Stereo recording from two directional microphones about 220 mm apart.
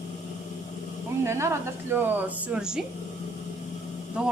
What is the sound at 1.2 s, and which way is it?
A woman's voice, 10° right (ahead or behind).